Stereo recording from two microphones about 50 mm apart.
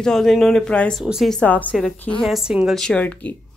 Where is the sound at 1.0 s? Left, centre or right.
Centre.